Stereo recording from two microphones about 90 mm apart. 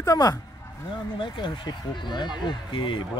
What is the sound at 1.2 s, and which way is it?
Speech, 60° left (ahead or behind).